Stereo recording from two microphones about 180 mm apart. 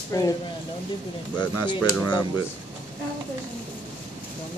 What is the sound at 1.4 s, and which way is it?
Speech, 25° left (ahead or behind).